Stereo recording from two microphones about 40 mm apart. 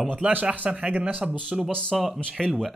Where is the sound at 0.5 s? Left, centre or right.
Right.